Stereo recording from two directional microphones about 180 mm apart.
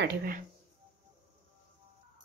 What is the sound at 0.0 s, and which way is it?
Speech, 60° right (ahead or behind).